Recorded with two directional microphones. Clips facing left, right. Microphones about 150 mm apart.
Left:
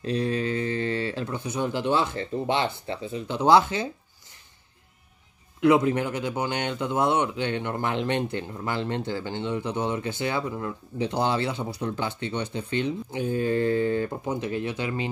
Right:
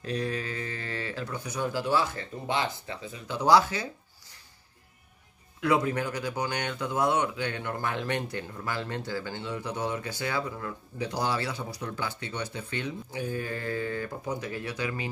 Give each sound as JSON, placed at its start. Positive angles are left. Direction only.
{"t": 0.0, "sound": "speech", "side_deg": 30}
{"t": 5.6, "sound": "speech", "side_deg": 25}